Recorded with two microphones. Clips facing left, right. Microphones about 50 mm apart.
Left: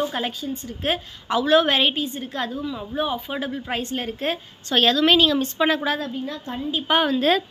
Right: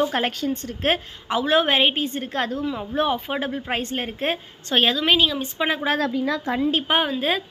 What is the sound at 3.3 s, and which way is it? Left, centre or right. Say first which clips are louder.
A woman's voice: right 2 dB; right.